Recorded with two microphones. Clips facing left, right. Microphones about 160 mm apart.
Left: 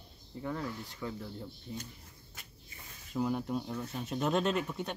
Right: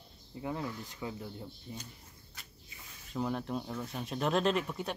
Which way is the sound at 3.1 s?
5° left (ahead or behind).